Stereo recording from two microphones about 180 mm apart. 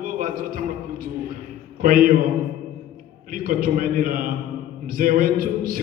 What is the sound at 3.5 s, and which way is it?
Music, 50° right (ahead or behind).